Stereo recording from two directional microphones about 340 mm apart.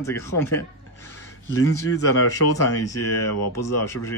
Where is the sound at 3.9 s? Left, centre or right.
Centre.